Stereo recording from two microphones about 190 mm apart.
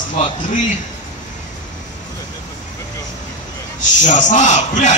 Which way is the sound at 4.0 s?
40° left (ahead or behind).